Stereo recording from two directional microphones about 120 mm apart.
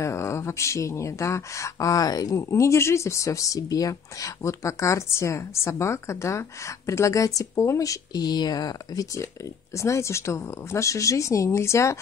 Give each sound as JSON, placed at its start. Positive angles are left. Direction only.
{"t": 0.0, "sound": "speech", "side_deg": 25}